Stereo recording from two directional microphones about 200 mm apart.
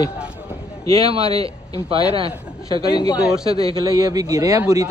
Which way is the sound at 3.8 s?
20° right (ahead or behind).